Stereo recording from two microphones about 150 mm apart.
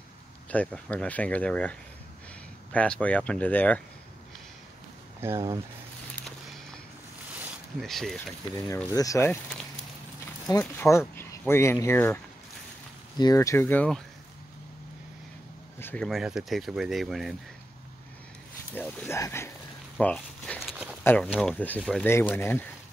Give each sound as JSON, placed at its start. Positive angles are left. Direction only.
{"t": 0.5, "sound": "speech", "side_deg": 10}
{"t": 5.2, "sound": "speech", "side_deg": -20}
{"t": 6.2, "sound": "a sound", "side_deg": 5}
{"t": 7.8, "sound": "speech", "side_deg": 0}
{"t": 8.9, "sound": "speech", "side_deg": 25}
{"t": 10.6, "sound": "speech", "side_deg": 15}
{"t": 13.2, "sound": "speech", "side_deg": 20}
{"t": 15.8, "sound": "speech", "side_deg": 10}
{"t": 16.1, "sound": "speech", "side_deg": -5}
{"t": 18.7, "sound": "speech", "side_deg": 15}
{"t": 20.0, "sound": "a sound", "side_deg": 5}
{"t": 21.2, "sound": "speech", "side_deg": 0}